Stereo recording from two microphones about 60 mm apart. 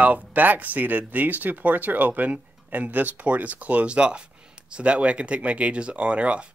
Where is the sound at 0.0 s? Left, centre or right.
Right.